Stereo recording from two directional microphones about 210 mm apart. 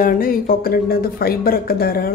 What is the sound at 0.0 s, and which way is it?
Speech, 45° left (ahead or behind).